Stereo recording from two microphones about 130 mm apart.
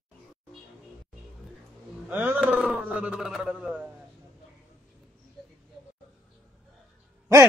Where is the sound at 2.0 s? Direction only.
15° right (ahead or behind).